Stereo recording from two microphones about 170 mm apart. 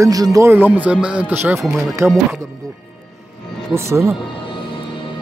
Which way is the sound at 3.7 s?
15° right (ahead or behind).